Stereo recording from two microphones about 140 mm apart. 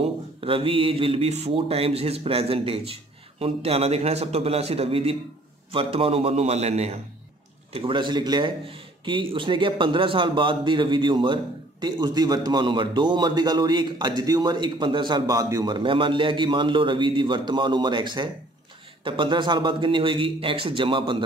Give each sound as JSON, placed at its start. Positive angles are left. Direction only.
{"t": 0.0, "sound": "speech", "side_deg": -45}
{"t": 7.7, "sound": "a man's voice", "side_deg": -35}